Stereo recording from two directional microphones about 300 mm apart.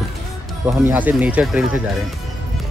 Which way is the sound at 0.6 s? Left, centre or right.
Centre.